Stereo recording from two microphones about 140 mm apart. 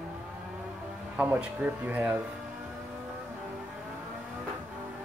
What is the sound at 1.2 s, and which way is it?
Speech, 10° right (ahead or behind).